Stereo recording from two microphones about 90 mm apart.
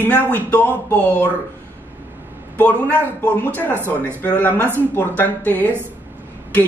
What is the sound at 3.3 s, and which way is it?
Speech, 20° left (ahead or behind).